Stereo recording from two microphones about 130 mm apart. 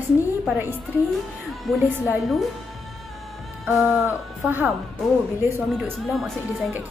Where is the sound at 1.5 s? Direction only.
Centre (ahead or behind).